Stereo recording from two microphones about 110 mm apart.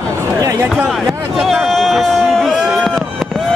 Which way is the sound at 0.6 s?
Centre (ahead or behind).